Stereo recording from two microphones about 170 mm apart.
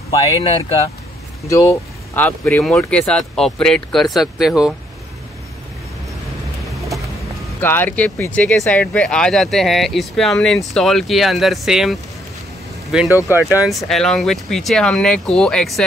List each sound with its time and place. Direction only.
0.1 s speech: 30° left (ahead or behind)
1.5 s speech: 15° left (ahead or behind); by 4.7 s centre (ahead or behind)
7.6 s speech: 10° left (ahead or behind)